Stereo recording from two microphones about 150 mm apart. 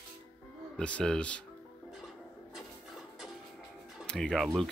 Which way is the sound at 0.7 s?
5° left (ahead or behind).